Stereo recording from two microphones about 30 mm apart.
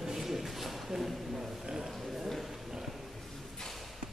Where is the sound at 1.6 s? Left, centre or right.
Right.